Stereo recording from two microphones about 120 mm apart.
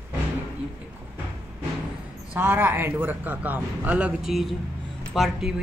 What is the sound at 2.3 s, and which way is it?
Speech, 15° right (ahead or behind).